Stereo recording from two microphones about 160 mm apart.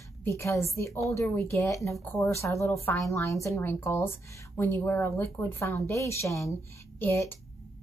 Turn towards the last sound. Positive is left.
turn(degrees=15)  # may be behind; listen again after turning